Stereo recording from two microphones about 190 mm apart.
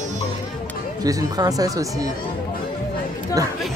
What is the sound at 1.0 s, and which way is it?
Speech, 20° right (ahead or behind).